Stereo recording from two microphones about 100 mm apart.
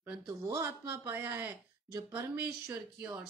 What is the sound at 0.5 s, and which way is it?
A woman's voice, 30° right (ahead or behind).